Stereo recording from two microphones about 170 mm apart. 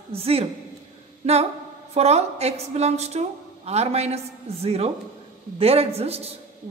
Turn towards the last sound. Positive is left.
turn(degrees=-35)  # may be behind; listen again after turning